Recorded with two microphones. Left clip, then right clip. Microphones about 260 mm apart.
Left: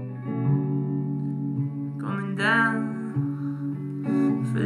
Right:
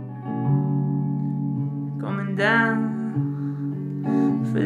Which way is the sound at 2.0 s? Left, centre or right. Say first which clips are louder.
Right 3 dB; left.